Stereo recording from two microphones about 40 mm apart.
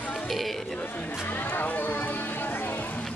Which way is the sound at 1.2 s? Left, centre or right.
Left.